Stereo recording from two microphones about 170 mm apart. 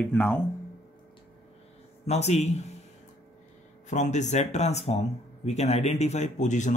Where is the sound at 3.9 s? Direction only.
45° left (ahead or behind).